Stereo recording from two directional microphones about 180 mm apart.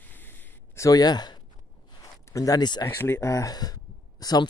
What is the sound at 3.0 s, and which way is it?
Speech, 15° left (ahead or behind).